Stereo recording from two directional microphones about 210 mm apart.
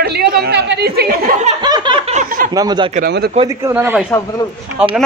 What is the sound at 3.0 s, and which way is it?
Speech, 50° right (ahead or behind).